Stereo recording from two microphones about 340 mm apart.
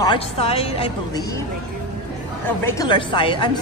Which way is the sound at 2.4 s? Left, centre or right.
Centre.